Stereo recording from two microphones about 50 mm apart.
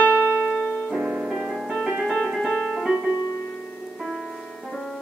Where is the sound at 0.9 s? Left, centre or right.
Centre.